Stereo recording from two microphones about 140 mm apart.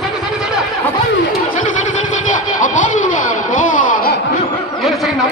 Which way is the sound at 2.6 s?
65° left (ahead or behind).